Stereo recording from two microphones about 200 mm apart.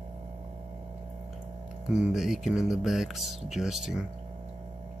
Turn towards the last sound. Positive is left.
turn(degrees=0)  # may be behind; listen again after turning